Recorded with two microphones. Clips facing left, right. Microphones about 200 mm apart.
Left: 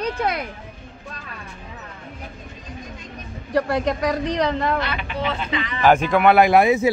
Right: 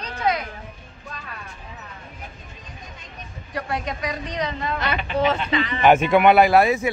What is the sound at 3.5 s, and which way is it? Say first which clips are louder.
A woman's voice: left 8 dB; 70° left (ahead or behind).